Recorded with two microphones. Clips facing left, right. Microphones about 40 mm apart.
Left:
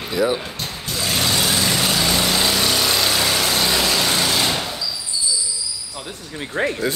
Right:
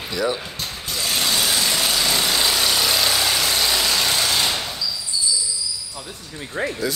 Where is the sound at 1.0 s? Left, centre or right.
Centre.